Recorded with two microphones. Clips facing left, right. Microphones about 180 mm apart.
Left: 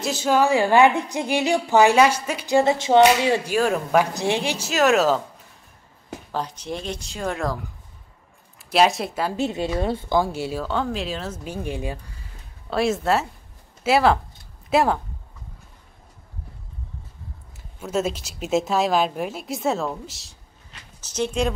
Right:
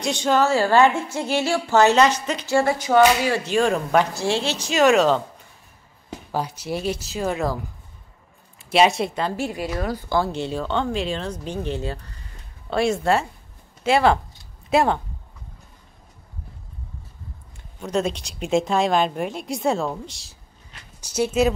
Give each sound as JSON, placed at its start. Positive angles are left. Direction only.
{"t": 0.0, "sound": "a woman's voice", "side_deg": 5}
{"t": 3.4, "sound": "a woman's voice", "side_deg": 5}
{"t": 4.1, "sound": "a woman's voice", "side_deg": 20}
{"t": 6.3, "sound": "speech", "side_deg": -10}
{"t": 8.5, "sound": "speech", "side_deg": 0}
{"t": 9.4, "sound": "speech", "side_deg": 25}
{"t": 10.1, "sound": "a woman's voice", "side_deg": 10}
{"t": 12.6, "sound": "a woman's voice", "side_deg": 0}
{"t": 17.7, "sound": "a woman's voice", "side_deg": 5}